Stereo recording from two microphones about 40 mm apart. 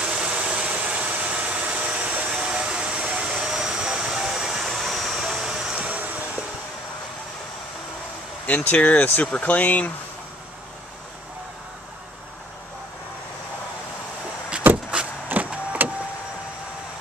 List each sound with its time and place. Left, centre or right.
0.0 s vehicle: right
2.4 s hair dryer: right
3.3 s hair dryer: centre
4.6 s vehicle: centre
5.8 s vehicle: right
8.5 s speech: left
14.7 s vehicle: right
15.3 s vehicle: right